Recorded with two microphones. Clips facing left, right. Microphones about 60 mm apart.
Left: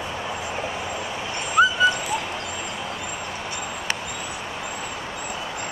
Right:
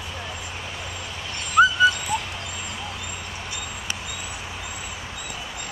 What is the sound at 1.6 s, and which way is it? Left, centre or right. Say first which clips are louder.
Owl: right 1 dB; centre.